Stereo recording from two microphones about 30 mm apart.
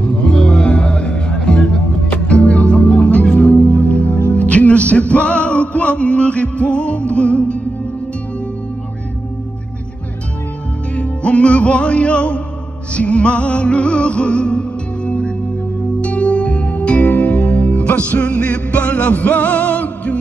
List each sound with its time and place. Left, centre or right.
0.2 s music: left
3.5 s music: left
11.0 s music: left
17.1 s music: left